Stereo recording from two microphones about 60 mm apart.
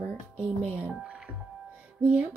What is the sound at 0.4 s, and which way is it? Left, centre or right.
Speech, right.